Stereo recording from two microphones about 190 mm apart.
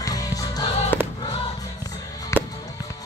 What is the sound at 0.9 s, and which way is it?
Choir, 10° left (ahead or behind).